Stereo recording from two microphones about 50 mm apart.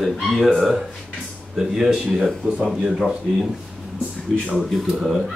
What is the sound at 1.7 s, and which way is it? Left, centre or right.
Speech, centre.